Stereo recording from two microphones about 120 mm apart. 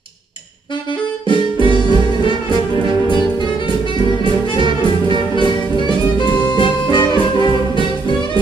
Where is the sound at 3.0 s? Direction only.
40° left (ahead or behind).